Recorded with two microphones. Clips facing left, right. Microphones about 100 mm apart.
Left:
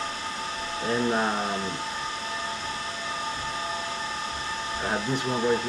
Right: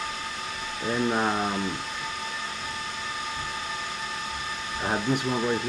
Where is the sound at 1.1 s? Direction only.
5° right (ahead or behind).